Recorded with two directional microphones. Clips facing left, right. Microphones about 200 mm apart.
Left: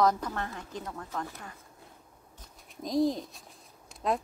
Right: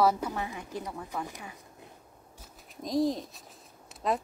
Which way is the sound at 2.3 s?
Centre (ahead or behind).